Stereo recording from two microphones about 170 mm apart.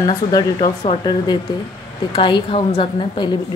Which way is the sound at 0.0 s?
25° left (ahead or behind).